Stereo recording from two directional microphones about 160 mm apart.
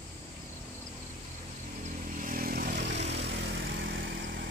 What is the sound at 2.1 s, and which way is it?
Vehicle, 55° right (ahead or behind).